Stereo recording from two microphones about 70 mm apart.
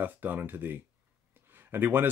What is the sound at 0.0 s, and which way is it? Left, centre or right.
Speech, right.